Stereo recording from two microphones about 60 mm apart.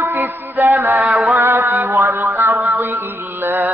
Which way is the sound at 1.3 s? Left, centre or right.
Right.